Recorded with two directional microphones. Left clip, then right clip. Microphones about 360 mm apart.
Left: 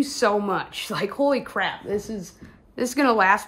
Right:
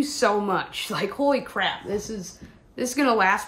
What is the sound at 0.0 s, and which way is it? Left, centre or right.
A woman's voice, centre.